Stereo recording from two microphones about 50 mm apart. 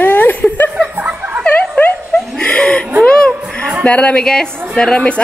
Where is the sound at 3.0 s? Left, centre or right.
Left.